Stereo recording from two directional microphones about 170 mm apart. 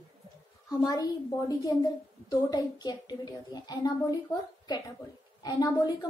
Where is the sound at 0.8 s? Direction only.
20° left (ahead or behind).